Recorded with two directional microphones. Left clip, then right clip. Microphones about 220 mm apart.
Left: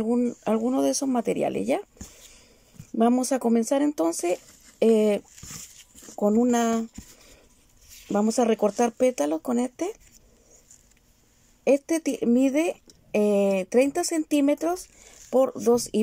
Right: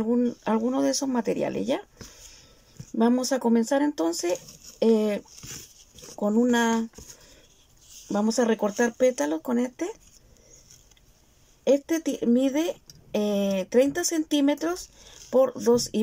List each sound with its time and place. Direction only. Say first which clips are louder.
0.0 s speech: even; 10° left (ahead or behind)
2.9 s speech: left 1 dB; 10° left (ahead or behind)
8.1 s speech: left 1 dB; 10° left (ahead or behind)
11.6 s speech: left 1 dB; 10° left (ahead or behind)